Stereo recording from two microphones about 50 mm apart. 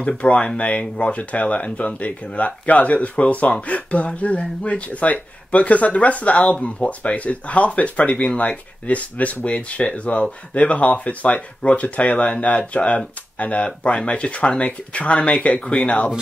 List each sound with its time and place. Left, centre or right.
0.3 s speech: left